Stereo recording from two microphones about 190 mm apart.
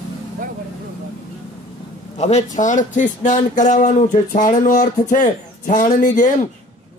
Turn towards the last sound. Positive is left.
turn(degrees=40)  # may be behind; listen again after turning